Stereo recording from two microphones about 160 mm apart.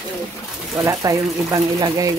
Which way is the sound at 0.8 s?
20° right (ahead or behind).